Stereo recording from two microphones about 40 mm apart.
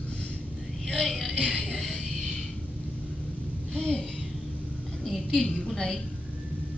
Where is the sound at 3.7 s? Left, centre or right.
Left.